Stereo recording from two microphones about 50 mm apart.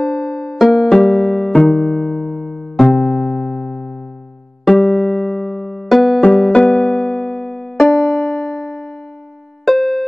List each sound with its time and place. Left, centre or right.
0.0 s music: centre
0.6 s music: centre
6.5 s music: centre
7.9 s music: centre